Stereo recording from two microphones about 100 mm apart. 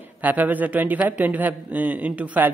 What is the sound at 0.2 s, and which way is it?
A man's voice, 15° right (ahead or behind).